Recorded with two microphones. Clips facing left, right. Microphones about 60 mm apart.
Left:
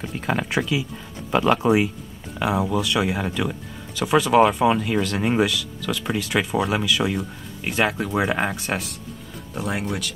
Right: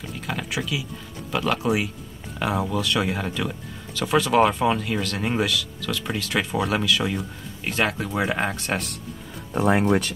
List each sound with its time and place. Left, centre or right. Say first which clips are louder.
0.3 s speech: left 5 dB; left
2.3 s speech: left 3 dB; centre
9.5 s speech: right 7 dB; right